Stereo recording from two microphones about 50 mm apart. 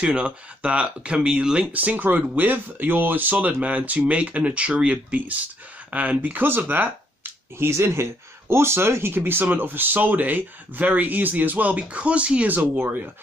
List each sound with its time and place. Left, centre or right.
0.0 s speech: right
1.7 s speech: right
7.5 s speech: right